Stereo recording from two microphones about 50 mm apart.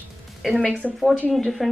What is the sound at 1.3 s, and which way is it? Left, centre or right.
Speech, centre.